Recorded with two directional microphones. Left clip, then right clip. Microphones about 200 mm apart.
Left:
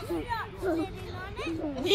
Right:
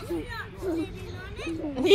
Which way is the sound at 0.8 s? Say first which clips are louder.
Even; 45° left (ahead or behind).